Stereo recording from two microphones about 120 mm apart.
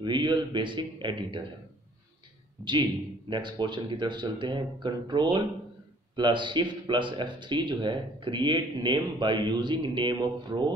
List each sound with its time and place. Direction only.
0.0 s speech: 40° right (ahead or behind)
2.6 s speech: 40° right (ahead or behind)